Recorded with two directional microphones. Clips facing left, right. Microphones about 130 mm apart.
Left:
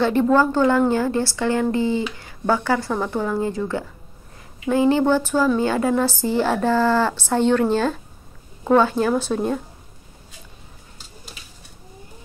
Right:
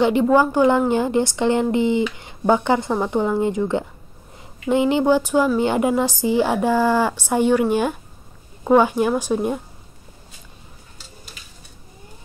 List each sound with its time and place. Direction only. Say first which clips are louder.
0.0 s a woman's voice: right 1 dB; 15° right (ahead or behind)